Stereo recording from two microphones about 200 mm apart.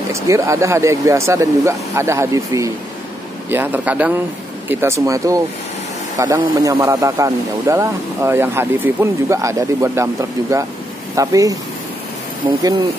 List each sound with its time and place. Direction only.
0.1 s speech: 15° right (ahead or behind)
11.1 s speech: 15° right (ahead or behind)